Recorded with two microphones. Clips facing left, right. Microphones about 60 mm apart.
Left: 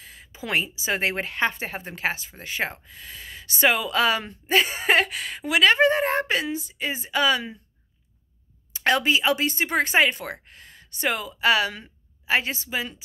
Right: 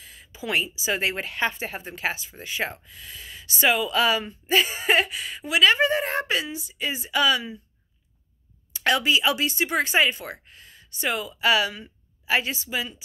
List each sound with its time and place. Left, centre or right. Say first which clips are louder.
0.0 s a woman's voice: right 1 dB; left
8.7 s speech: left 1 dB; left